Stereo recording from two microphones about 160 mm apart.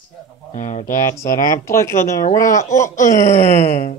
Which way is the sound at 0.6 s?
50° left (ahead or behind).